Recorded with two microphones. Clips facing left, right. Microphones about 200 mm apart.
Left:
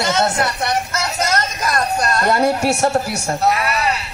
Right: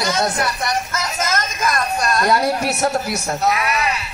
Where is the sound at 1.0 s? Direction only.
35° left (ahead or behind).